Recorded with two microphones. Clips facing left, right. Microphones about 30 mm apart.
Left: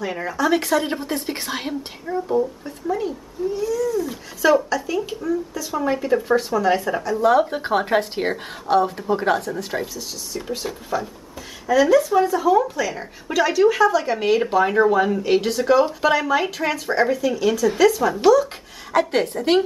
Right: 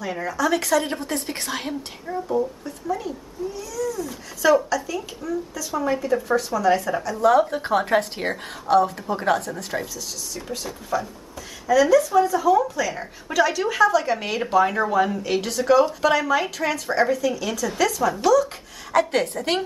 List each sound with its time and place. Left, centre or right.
0.0 s speech: centre
2.6 s a sound: centre
4.6 s speech: centre